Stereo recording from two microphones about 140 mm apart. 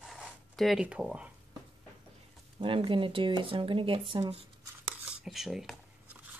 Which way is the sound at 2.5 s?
40° right (ahead or behind).